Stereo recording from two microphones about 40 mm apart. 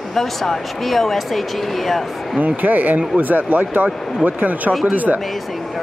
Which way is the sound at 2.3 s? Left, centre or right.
Right.